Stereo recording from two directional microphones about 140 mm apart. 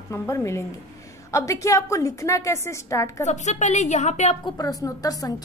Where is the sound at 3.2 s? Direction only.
55° left (ahead or behind).